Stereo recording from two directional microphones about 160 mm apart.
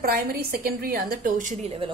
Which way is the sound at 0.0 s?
70° right (ahead or behind).